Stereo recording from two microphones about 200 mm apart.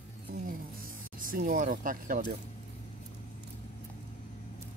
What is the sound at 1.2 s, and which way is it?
Speech, 45° right (ahead or behind).